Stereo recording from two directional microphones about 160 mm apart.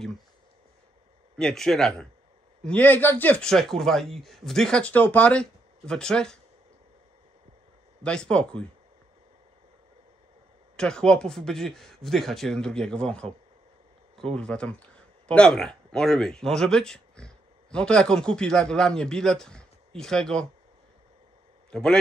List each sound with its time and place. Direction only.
1.3 s a man's voice: 5° left (ahead or behind)
8.0 s a man's voice: 5° left (ahead or behind)
10.8 s a man's voice: 5° left (ahead or behind)
21.6 s a man's voice: 5° left (ahead or behind)